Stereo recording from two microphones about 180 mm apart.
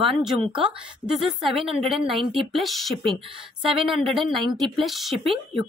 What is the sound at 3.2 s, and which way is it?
Speech, 30° right (ahead or behind).